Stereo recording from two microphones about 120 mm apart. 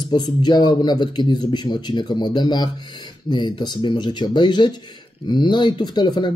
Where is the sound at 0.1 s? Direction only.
35° left (ahead or behind).